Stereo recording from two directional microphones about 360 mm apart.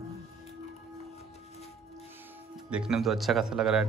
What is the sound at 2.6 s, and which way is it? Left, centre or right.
Speech, centre.